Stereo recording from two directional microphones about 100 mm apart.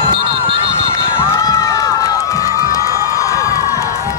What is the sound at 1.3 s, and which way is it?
Crowd, 30° left (ahead or behind).